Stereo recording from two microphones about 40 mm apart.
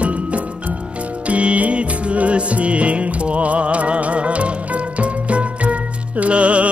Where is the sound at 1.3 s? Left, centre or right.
Right.